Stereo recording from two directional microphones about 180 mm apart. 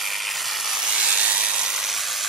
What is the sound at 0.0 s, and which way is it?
Sawing, centre (ahead or behind).